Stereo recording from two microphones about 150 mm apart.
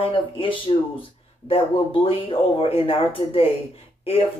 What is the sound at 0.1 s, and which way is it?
Speech, 35° left (ahead or behind).